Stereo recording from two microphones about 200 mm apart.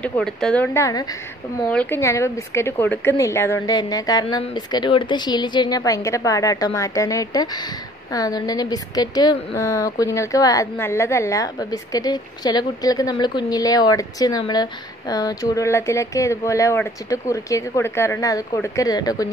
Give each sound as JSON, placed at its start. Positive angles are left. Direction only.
{"t": 0.0, "sound": "a woman's voice", "side_deg": 5}